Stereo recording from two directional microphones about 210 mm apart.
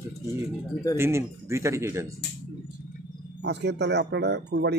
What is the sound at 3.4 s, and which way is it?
Speech, 55° right (ahead or behind).